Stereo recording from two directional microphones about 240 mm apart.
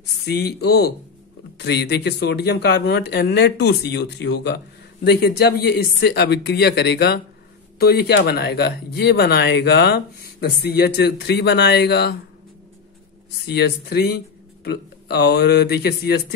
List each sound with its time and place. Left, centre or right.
0.0 s speech: left
13.5 s speech: left